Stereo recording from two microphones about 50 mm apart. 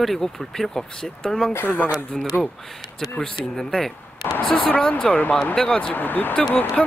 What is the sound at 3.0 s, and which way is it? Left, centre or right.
Speech, centre.